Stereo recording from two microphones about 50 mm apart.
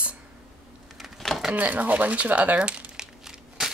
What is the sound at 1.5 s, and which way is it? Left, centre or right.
Speech, right.